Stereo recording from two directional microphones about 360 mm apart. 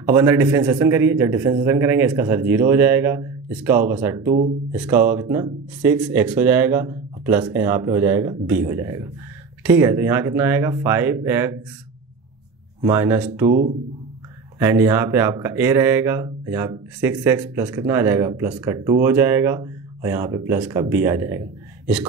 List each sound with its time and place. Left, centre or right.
0.1 s speech: centre
4.3 s speech: centre
4.7 s speech: centre
12.8 s speech: centre
14.6 s speech: centre